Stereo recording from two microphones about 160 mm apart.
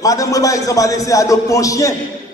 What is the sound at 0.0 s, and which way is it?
A man's voice, 20° left (ahead or behind).